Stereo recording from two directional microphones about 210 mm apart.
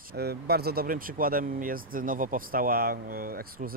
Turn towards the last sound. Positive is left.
turn(degrees=-45)  # may be behind; listen again after turning